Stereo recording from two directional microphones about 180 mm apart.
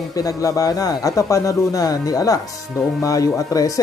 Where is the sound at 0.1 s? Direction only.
20° left (ahead or behind).